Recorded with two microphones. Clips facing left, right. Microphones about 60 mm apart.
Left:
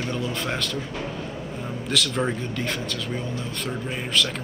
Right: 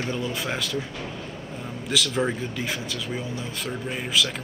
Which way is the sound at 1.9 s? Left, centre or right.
Centre.